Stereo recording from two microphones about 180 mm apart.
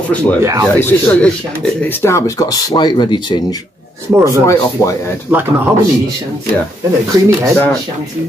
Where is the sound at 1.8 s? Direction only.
15° left (ahead or behind).